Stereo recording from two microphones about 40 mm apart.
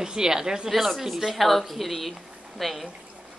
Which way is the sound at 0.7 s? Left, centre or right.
Centre.